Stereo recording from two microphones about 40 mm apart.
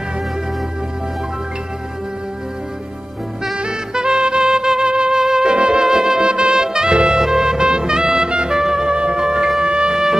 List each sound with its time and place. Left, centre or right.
3.5 s music: centre
5.9 s music: centre
9.7 s wind instrument: centre